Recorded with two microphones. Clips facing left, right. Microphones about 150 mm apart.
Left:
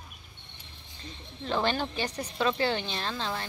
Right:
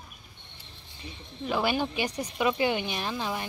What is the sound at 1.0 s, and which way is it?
A woman's voice, 10° right (ahead or behind).